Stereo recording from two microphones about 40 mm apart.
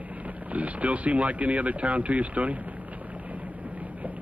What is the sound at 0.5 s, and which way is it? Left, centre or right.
Speech, right.